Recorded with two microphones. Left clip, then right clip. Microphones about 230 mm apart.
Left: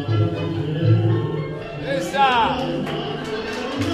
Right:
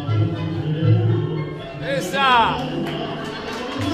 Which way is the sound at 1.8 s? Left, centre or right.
Right.